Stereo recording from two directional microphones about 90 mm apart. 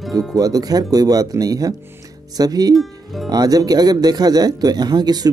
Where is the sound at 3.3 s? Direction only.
45° right (ahead or behind).